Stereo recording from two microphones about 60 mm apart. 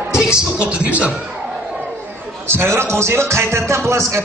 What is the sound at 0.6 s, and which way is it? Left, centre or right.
Speech, centre.